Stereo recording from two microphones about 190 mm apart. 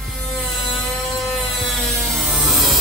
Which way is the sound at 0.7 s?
Centre (ahead or behind).